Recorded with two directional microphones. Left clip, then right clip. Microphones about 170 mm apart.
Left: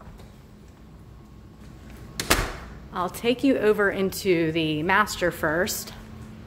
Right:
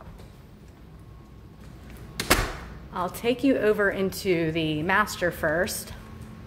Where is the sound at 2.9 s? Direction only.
10° left (ahead or behind).